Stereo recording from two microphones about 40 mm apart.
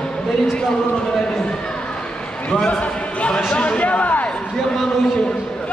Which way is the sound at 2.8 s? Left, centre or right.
Left.